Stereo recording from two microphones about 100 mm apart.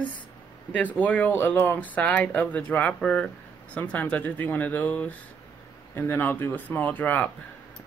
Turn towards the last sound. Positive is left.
turn(degrees=20)  # may be behind; listen again after turning